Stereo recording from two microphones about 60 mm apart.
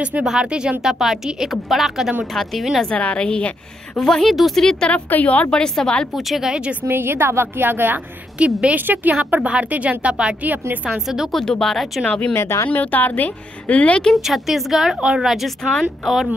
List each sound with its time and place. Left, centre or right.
0.2 s a woman's voice: centre
2.9 s a woman's voice: centre
4.0 s a woman's voice: centre
6.1 s a woman's voice: centre
6.5 s speech: centre
6.8 s a woman's voice: right
8.4 s speech: centre
8.7 s a woman's voice: right
10.9 s speech: centre
11.3 s a woman's voice: centre
12.0 s speech: left
12.4 s speech: left
12.6 s speech: left
14.1 s a woman's voice: centre